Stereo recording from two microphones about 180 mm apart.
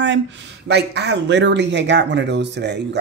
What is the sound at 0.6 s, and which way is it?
Speech, 70° right (ahead or behind).